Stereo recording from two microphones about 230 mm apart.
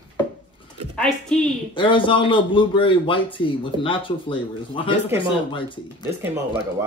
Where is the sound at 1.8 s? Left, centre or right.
Left.